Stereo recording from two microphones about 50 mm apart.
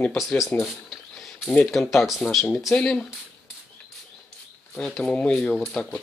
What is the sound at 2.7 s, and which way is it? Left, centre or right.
Speech, centre.